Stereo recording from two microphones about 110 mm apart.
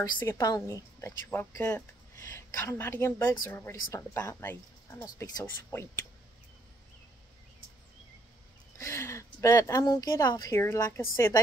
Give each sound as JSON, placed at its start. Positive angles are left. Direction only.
{"t": 0.3, "sound": "a woman's voice", "side_deg": 30}
{"t": 8.7, "sound": "a woman's voice", "side_deg": 25}